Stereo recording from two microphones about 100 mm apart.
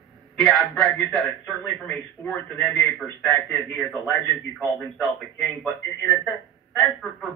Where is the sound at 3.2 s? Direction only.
5° left (ahead or behind).